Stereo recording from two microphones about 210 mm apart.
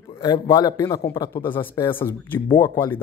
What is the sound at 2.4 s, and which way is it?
Speech, 20° left (ahead or behind).